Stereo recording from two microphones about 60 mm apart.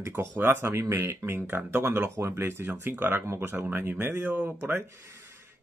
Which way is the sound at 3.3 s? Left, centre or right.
Right.